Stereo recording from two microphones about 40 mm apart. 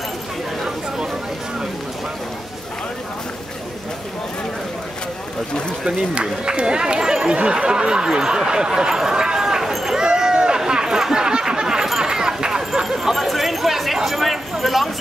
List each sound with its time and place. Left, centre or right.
5.9 s speech: right
9.7 s run: centre
9.9 s a sound: centre
12.8 s chatter: centre